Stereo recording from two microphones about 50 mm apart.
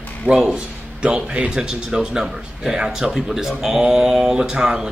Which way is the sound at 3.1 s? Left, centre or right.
Centre.